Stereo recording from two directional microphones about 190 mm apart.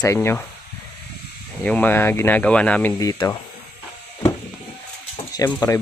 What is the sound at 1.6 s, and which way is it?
Speech, 10° left (ahead or behind).